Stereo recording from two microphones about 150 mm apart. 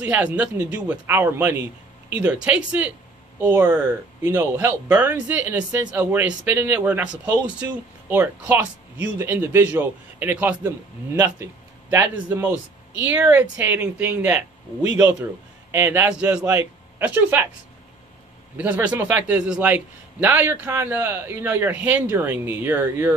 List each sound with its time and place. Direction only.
0.0 s speech: 10° right (ahead or behind)
18.6 s speech: 10° right (ahead or behind)